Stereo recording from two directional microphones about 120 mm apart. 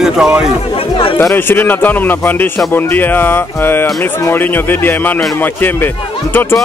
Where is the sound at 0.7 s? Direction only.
50° left (ahead or behind).